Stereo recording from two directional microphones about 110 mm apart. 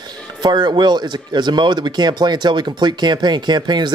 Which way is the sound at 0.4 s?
40° right (ahead or behind).